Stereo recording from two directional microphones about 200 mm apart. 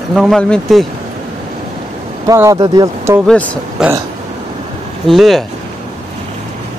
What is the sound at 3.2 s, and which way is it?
Speech, 5° left (ahead or behind).